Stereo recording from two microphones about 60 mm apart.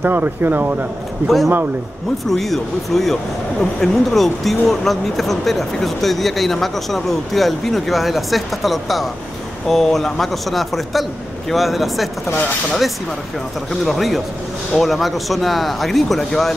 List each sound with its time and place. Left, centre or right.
0.0 s speech: right
1.2 s speech: centre
12.3 s speech: left
13.7 s speech: centre